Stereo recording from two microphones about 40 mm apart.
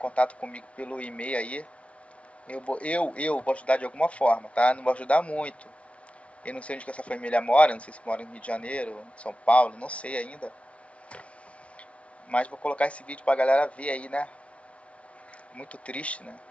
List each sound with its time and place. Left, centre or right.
0.0 s speech: left
12.3 s speech: left
15.5 s speech: left